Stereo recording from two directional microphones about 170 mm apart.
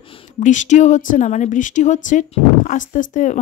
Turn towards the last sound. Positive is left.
turn(degrees=50)  # may be behind; listen again after turning